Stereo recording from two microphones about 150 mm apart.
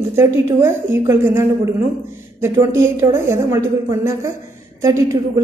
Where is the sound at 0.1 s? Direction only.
15° right (ahead or behind).